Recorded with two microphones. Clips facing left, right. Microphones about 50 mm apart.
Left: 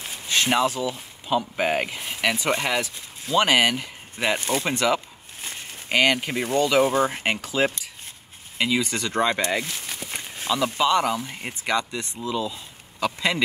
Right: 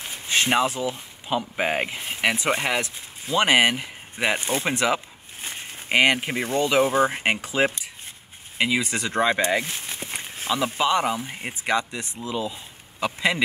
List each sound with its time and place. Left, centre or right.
0.3 s speech: centre
10.1 s speech: centre